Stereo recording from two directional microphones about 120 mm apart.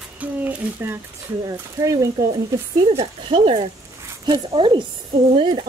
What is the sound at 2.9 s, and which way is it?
A woman's voice, 50° right (ahead or behind).